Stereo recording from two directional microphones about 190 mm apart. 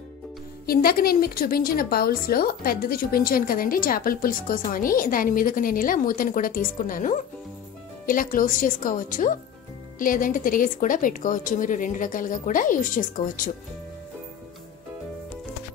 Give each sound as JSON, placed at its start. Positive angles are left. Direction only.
{"t": 0.7, "sound": "a woman's voice", "side_deg": 50}